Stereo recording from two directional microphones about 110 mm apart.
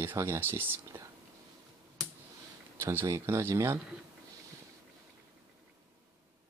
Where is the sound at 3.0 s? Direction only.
30° right (ahead or behind).